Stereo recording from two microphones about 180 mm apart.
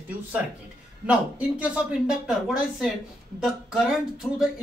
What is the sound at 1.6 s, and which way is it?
Speech, 5° right (ahead or behind).